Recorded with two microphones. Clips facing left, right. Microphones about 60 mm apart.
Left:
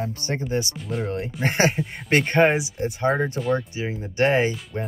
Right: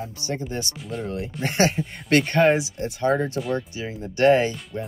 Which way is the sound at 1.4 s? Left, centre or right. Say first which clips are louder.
Even; left.